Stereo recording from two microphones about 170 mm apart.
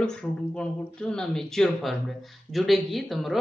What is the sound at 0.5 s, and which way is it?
Speech, 5° left (ahead or behind).